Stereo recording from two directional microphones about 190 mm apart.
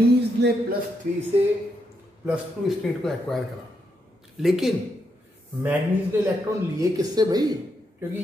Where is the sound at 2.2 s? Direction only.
Centre (ahead or behind).